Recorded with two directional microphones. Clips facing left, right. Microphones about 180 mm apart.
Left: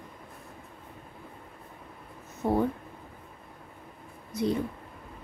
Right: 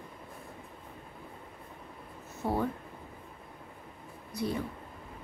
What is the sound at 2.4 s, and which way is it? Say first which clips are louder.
Speech: left 5 dB; 15° left (ahead or behind).